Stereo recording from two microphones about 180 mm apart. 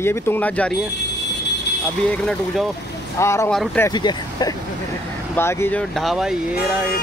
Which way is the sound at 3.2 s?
15° left (ahead or behind).